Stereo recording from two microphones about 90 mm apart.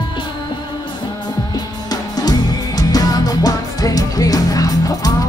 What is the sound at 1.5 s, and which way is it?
Music, 45° left (ahead or behind).